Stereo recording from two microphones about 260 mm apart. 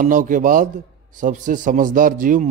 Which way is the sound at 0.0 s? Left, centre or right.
Right.